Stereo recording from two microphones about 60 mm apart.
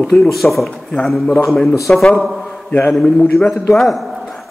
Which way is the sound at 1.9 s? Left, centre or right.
Centre.